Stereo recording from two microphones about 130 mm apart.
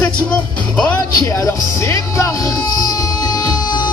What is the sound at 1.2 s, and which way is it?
Speech, 20° left (ahead or behind).